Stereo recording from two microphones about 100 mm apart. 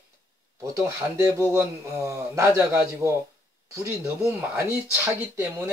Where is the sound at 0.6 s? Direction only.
30° right (ahead or behind).